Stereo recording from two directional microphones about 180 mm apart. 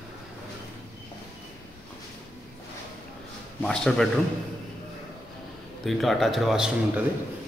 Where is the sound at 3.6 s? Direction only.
Centre (ahead or behind).